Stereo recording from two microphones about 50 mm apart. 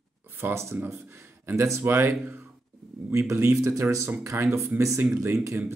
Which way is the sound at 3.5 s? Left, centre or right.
Right.